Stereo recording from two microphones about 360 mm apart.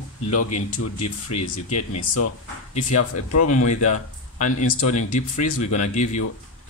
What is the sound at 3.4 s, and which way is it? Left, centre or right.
Speech, centre.